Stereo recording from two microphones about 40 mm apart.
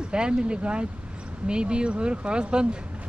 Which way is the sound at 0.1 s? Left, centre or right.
Right.